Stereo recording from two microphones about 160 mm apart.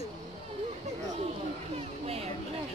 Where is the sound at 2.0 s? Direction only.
40° right (ahead or behind).